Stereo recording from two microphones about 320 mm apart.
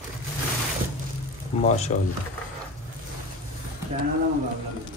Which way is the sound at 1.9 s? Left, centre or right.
Left.